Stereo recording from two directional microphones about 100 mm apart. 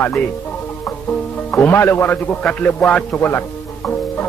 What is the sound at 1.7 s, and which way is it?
A man's voice, 20° left (ahead or behind).